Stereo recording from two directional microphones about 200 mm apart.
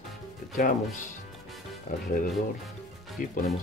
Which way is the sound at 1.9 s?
40° left (ahead or behind).